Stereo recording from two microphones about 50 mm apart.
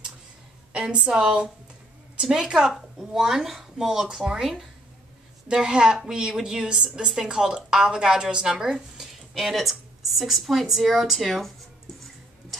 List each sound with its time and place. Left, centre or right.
0.7 s a woman's voice: right
2.5 s a woman's voice: centre
5.5 s a woman's voice: centre